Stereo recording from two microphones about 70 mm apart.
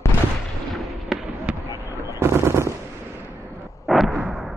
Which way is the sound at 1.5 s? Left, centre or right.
Centre.